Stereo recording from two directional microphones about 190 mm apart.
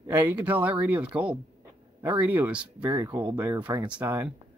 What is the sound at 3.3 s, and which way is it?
Speech, 10° right (ahead or behind).